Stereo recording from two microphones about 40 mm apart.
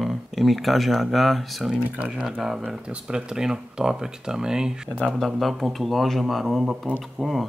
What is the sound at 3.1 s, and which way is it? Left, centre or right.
Speech, centre.